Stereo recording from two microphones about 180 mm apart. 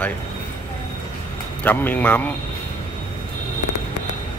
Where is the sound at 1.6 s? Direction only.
10° left (ahead or behind).